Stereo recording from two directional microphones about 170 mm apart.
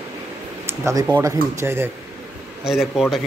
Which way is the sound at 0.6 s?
15° right (ahead or behind).